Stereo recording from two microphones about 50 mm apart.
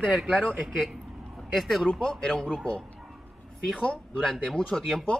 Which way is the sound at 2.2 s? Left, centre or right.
Centre.